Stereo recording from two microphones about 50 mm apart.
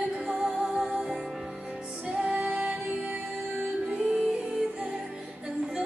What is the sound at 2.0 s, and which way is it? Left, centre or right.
Music, right.